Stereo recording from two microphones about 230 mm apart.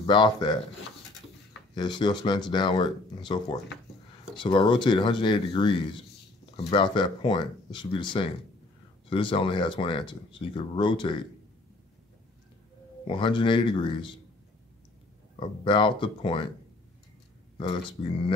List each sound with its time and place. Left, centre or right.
0.0 s speech: left
1.8 s speech: centre
13.0 s speech: left
15.3 s speech: left